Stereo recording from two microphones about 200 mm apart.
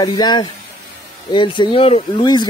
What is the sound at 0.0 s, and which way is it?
Speech, 20° left (ahead or behind).